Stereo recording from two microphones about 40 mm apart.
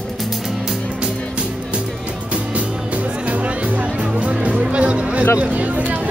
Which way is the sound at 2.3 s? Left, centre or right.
Right.